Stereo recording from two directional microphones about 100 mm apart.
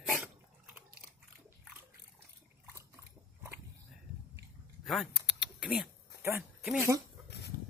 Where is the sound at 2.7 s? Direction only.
25° right (ahead or behind).